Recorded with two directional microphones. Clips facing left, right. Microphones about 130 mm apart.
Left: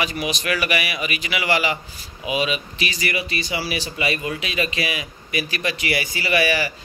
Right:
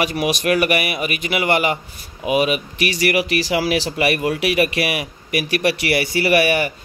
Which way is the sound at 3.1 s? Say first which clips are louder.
Right 8 dB; 85° right.